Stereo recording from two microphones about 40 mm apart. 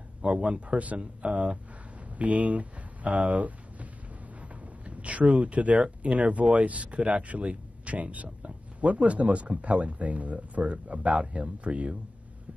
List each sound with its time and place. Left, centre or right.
0.2 s speech: right
2.0 s a sound: right
5.8 s speech: right